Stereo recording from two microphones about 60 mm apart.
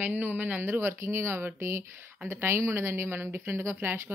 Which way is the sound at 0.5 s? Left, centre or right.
Right.